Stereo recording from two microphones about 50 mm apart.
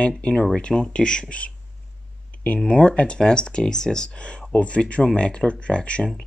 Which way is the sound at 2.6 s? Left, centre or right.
Left.